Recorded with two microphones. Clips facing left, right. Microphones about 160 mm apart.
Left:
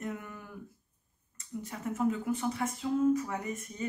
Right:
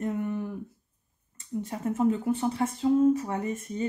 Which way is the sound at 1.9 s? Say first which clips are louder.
Right 5 dB; 30° right (ahead or behind).